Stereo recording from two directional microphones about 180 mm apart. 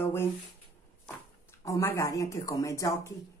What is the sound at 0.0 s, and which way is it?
Speech, 15° left (ahead or behind).